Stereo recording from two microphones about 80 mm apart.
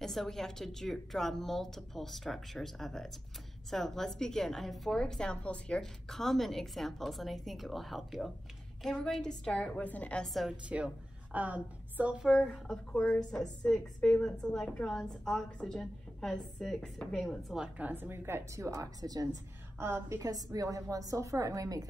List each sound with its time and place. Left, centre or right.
0.0 s a woman's voice: centre
10.2 s a woman's voice: centre
10.7 s a woman's voice: centre
12.3 s a woman's voice: centre
17.6 s a woman's voice: centre; by 19.2 s right
19.8 s a woman's voice: right
20.2 s a woman's voice: right